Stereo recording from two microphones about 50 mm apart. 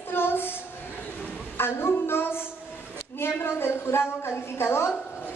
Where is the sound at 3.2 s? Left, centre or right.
Left.